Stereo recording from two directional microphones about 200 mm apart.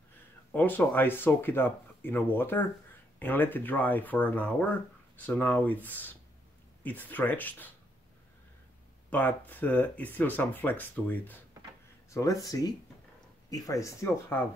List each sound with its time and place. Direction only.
0.5 s speech: 10° left (ahead or behind)
9.1 s speech: 10° left (ahead or behind)